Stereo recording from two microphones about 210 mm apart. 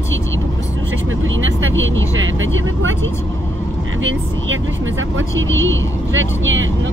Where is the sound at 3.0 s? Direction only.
10° left (ahead or behind).